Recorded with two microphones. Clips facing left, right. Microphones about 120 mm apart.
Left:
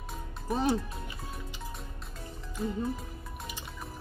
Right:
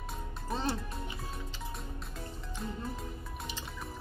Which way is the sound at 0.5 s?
15° left (ahead or behind).